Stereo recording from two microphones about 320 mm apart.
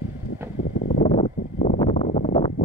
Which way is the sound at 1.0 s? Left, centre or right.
Centre.